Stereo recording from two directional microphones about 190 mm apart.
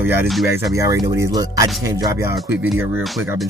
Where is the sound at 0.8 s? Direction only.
15° right (ahead or behind).